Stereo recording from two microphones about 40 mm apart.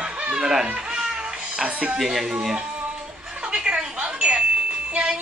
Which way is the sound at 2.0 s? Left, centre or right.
Centre.